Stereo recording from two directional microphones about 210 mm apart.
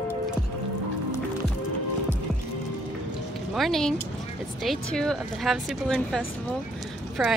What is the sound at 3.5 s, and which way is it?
Speech, centre (ahead or behind).